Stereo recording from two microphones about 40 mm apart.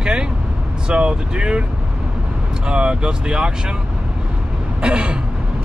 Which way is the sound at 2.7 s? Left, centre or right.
Right.